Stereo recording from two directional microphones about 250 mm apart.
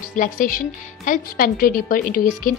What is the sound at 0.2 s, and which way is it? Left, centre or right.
Speech, left.